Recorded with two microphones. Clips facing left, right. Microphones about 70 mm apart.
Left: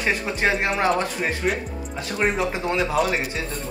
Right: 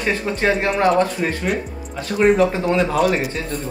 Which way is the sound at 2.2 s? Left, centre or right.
Centre.